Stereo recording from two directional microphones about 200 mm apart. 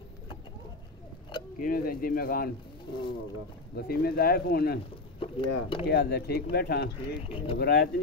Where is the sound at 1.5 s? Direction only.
45° left (ahead or behind).